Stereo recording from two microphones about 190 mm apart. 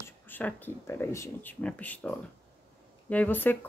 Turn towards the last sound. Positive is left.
turn(degrees=10)  # may be behind; listen again after turning